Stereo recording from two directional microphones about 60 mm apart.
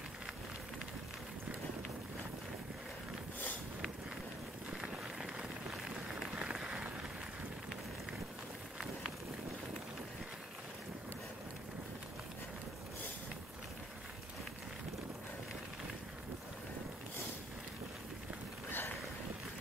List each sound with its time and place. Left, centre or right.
4.6 s run: centre
5.2 s rain on surface: centre
18.7 s a sound: left